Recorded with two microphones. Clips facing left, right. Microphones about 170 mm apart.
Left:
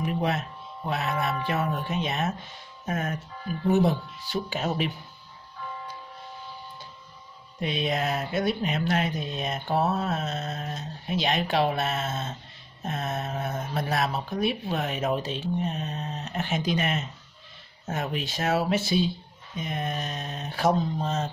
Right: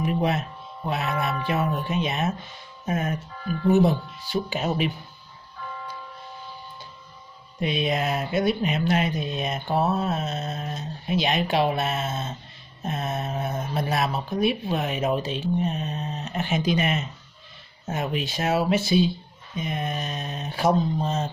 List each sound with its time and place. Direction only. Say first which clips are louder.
0.0 s speech: right 3 dB; 15° right (ahead or behind)
4.3 s speech: right 3 dB; 10° right (ahead or behind)
7.6 s speech: right 3 dB; 10° right (ahead or behind)